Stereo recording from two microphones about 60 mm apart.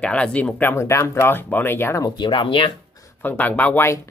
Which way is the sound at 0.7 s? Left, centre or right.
Left.